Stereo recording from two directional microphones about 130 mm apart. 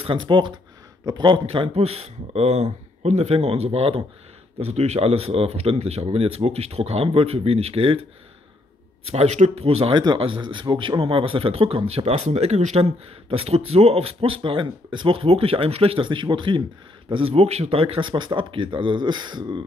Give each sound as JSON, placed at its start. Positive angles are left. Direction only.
{"t": 0.0, "sound": "speech", "side_deg": -40}
{"t": 9.1, "sound": "speech", "side_deg": -60}